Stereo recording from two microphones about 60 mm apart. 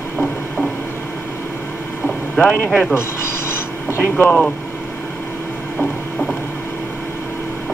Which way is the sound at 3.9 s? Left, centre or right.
Left.